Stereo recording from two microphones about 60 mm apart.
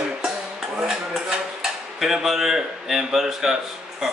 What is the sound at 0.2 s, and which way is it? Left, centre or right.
Dishes, centre.